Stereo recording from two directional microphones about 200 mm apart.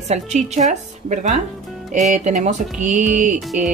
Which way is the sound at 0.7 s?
35° right (ahead or behind).